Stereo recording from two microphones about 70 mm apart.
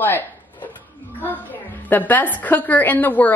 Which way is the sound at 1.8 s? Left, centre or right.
Left.